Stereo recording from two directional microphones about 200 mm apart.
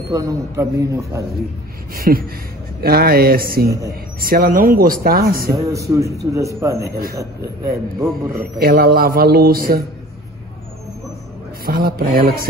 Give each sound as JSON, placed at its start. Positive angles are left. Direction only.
{"t": 0.1, "sound": "a man's voice", "side_deg": -15}
{"t": 2.0, "sound": "a man's voice", "side_deg": -45}
{"t": 5.7, "sound": "a man's voice", "side_deg": -15}
{"t": 7.4, "sound": "a man's voice", "side_deg": -50}
{"t": 11.6, "sound": "a man's voice", "side_deg": -45}